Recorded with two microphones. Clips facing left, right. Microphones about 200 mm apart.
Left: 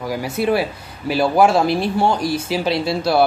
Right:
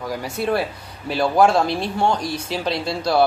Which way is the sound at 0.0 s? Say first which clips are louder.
Left 4 dB; 5° left (ahead or behind).